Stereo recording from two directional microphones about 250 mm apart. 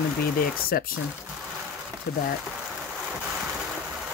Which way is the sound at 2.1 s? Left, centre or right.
Left.